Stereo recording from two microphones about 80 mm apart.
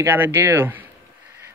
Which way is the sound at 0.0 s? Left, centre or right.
Right.